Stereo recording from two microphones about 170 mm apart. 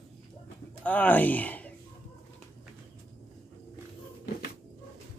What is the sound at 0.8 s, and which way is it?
Speech, 10° left (ahead or behind).